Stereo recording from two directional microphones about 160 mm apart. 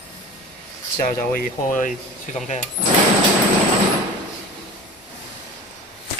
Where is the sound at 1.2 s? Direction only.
60° left (ahead or behind).